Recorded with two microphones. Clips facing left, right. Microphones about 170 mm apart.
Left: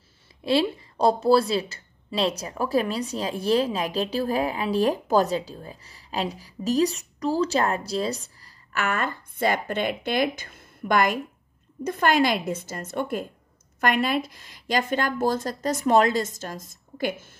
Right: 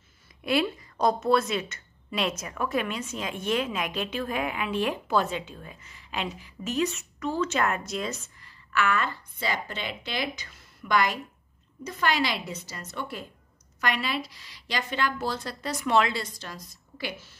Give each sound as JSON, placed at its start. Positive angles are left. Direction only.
{"t": 0.4, "sound": "a woman's voice", "side_deg": 30}
{"t": 8.7, "sound": "a woman's voice", "side_deg": 45}